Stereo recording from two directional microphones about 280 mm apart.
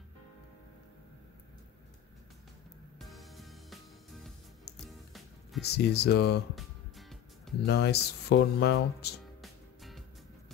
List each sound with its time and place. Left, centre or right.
3.0 s music: centre
5.7 s speech: left
6.5 s music: centre
7.6 s speech: left
9.4 s music: centre